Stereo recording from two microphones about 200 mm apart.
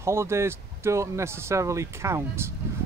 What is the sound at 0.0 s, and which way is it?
Speech, 15° right (ahead or behind).